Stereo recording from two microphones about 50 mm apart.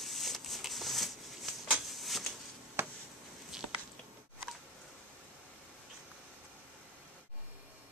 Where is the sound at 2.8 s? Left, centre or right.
Right.